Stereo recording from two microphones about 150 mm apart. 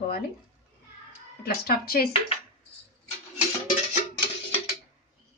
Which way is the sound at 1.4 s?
90° left.